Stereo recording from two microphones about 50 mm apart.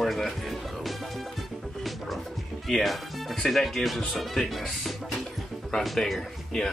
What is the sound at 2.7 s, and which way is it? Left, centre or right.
Speech, centre.